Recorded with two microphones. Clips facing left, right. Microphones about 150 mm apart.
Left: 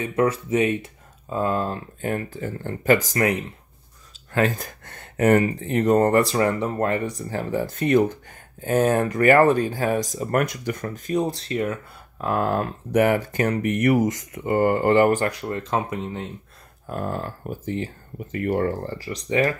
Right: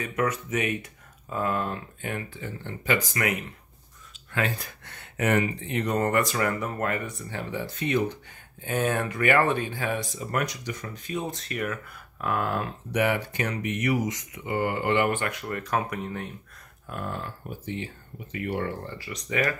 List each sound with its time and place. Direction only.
0.0 s speech: 30° left (ahead or behind)
3.1 s speech: 35° left (ahead or behind)
4.3 s speech: 45° left (ahead or behind); by 16.3 s 25° left (ahead or behind)
16.9 s speech: 40° left (ahead or behind)